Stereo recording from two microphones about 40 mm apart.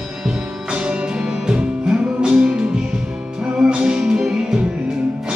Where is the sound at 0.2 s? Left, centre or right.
Centre.